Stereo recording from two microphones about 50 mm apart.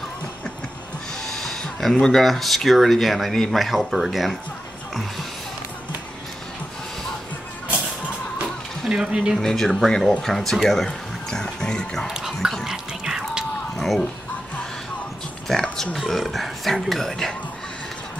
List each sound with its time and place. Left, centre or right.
1.2 s a sound: centre
2.2 s speech: centre
8.8 s speech: centre
9.4 s speech: centre
12.1 s speech: centre
12.6 s music: centre
13.7 s a sound: centre
15.6 s speech: centre
16.0 s speech: centre